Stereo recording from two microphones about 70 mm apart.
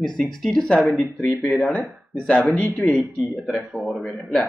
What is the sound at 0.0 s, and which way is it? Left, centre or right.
Speech, centre.